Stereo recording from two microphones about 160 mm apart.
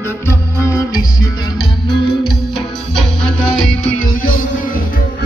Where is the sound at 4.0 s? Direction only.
60° left (ahead or behind).